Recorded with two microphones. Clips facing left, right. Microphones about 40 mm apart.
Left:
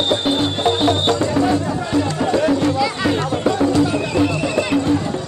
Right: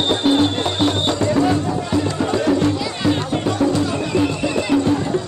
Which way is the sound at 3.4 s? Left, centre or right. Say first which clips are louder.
Left 3 dB; centre.